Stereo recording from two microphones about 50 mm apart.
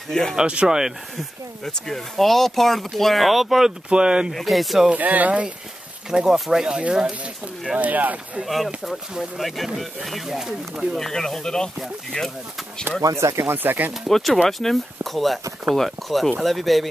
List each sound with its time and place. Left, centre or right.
0.1 s speech: centre
0.4 s speech: centre
1.1 s speech: centre
3.9 s speech: centre
4.3 s speech: centre
4.9 s speech: right
6.0 s speech: centre
7.7 s speech: right
8.5 s speech: centre
11.0 s speech: centre
13.1 s speech: right
13.5 s speech: right
14.0 s speech: centre